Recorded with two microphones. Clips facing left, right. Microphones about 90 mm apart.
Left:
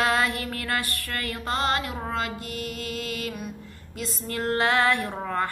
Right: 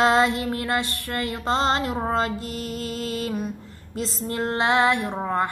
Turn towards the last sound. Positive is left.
turn(degrees=-20)  # may be behind; listen again after turning